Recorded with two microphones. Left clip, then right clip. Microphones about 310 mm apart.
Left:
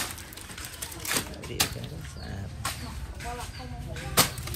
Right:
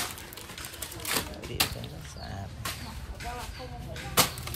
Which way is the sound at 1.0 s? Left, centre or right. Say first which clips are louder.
Left 1 dB; centre.